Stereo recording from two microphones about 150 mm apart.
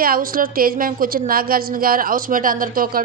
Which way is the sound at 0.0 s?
70° right (ahead or behind).